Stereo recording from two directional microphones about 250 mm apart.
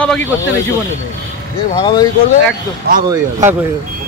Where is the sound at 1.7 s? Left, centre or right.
Centre.